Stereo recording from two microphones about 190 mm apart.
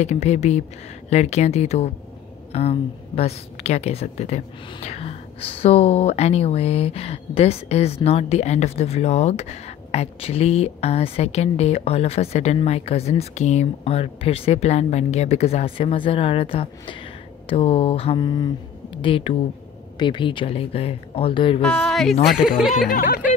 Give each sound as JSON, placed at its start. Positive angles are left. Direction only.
{"t": 0.0, "sound": "a woman's voice", "side_deg": 35}
{"t": 21.5, "sound": "a woman's voice", "side_deg": 5}
{"t": 22.8, "sound": "speech", "side_deg": 50}